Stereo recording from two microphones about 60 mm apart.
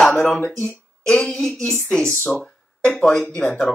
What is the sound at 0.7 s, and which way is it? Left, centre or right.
Speech, left.